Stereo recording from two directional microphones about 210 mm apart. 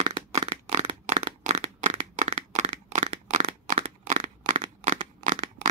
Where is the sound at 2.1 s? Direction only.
35° right (ahead or behind).